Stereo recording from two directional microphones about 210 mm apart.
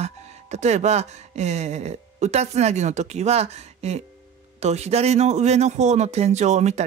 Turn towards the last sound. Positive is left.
turn(degrees=-30)  # may be behind; listen again after turning